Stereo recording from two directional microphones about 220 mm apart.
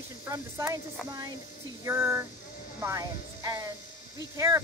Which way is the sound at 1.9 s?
10° right (ahead or behind).